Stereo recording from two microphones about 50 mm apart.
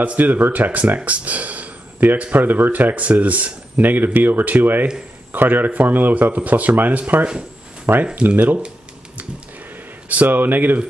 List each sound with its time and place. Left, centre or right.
0.0 s speech: right
10.0 s speech: right